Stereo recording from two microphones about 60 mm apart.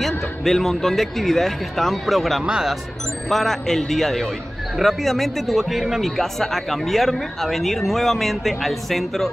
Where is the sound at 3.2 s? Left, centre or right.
Centre.